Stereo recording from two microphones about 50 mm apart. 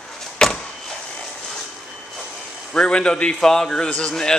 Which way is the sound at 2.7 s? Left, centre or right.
Centre.